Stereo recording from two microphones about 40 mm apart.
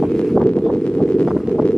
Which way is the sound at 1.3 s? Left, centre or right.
Centre.